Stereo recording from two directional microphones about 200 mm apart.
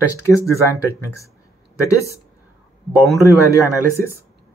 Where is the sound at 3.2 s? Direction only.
15° left (ahead or behind).